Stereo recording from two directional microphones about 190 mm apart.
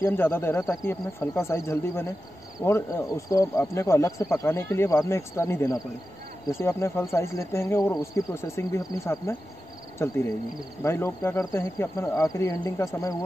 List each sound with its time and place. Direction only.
0.0 s speech: 10° left (ahead or behind)